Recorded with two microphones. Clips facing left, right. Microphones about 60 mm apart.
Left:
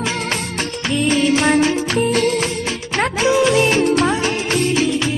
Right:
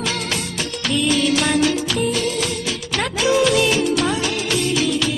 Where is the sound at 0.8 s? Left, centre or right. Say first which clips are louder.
Left 2 dB; left.